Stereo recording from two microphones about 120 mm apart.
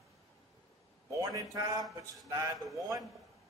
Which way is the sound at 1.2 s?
30° right (ahead or behind).